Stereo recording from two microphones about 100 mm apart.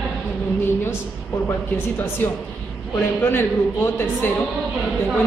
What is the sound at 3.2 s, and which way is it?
A woman's voice, 20° left (ahead or behind).